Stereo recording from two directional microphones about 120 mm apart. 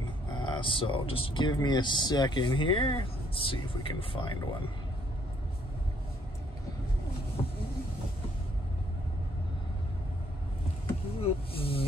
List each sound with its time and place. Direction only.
0.3 s speech: 45° left (ahead or behind)
11.1 s speech: 50° left (ahead or behind)